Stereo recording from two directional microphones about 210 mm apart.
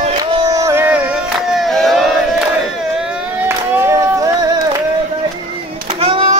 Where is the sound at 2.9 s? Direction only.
5° right (ahead or behind).